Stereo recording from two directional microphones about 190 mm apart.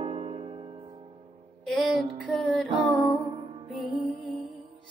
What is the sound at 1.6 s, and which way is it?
Music, centre (ahead or behind).